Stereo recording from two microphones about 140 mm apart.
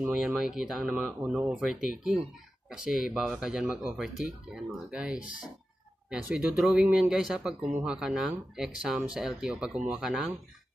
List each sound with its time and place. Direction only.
0.1 s speech: 5° right (ahead or behind)